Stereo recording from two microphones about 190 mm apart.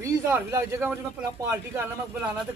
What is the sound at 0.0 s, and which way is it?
Speech, 15° right (ahead or behind).